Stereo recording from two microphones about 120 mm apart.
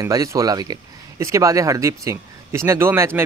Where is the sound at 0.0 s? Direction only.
25° right (ahead or behind).